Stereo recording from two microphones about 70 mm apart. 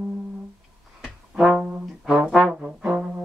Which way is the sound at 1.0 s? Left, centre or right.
Centre.